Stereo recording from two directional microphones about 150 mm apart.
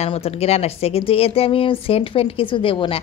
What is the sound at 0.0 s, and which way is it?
A woman's voice, 40° left (ahead or behind).